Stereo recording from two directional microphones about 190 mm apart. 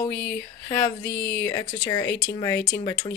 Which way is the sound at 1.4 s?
15° left (ahead or behind).